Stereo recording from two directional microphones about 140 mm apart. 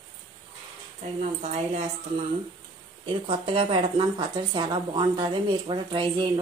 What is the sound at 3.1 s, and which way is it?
A woman's voice, 40° right (ahead or behind).